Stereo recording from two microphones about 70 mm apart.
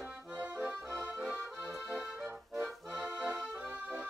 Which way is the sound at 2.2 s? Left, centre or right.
Right.